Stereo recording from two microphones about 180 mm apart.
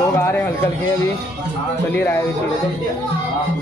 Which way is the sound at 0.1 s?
15° left (ahead or behind).